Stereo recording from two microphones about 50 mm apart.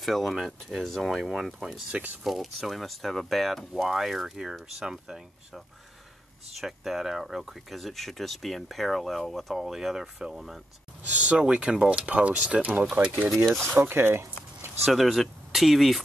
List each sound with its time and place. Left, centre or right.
0.0 s speech: centre
6.6 s speech: centre
11.1 s speech: right
13.7 s speech: right
14.8 s speech: centre